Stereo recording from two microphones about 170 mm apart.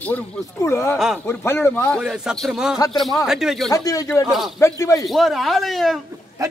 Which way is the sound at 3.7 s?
20° left (ahead or behind).